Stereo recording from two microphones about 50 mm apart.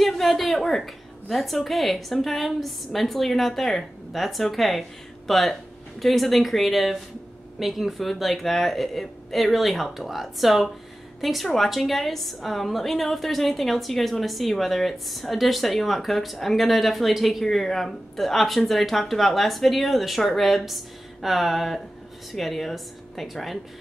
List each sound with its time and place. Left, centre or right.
0.0 s a woman's voice: centre